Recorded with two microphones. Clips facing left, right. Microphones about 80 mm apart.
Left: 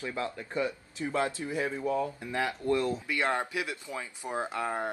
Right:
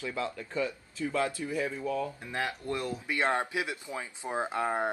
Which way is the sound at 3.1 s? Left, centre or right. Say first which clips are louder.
Right 1 dB; right.